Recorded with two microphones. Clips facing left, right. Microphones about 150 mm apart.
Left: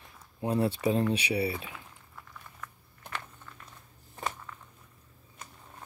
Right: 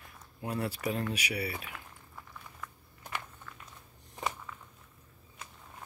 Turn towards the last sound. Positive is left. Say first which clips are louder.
# even
turn(degrees=-5)  # may be behind; listen again after turning